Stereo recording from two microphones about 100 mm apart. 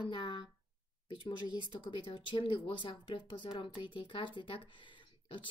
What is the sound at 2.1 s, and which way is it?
Speech, 60° left (ahead or behind).